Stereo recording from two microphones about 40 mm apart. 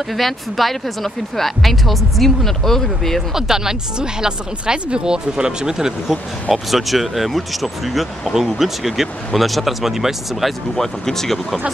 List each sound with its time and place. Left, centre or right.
0.1 s speech: centre
3.3 s speech: centre
6.5 s speech: centre
10.8 s speech: centre